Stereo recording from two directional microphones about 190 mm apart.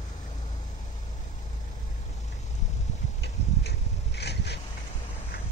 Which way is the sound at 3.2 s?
60° left (ahead or behind).